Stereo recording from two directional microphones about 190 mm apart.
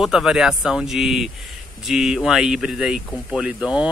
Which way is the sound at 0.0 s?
Centre (ahead or behind).